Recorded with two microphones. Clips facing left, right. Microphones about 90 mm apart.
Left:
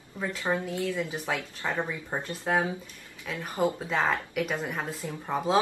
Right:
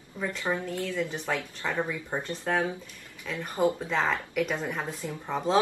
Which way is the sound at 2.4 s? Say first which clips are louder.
Left 1 dB; 15° left (ahead or behind).